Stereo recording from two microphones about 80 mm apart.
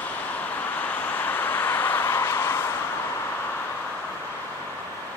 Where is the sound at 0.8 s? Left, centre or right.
Left.